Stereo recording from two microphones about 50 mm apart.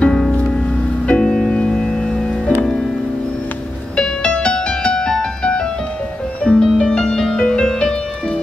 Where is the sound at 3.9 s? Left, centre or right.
Centre.